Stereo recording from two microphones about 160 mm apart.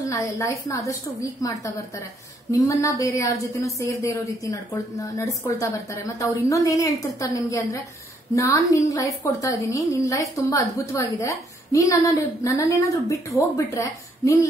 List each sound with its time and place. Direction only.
0.1 s speech: 20° left (ahead or behind)